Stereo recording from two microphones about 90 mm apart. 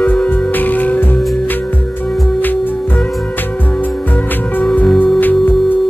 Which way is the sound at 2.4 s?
20° left (ahead or behind).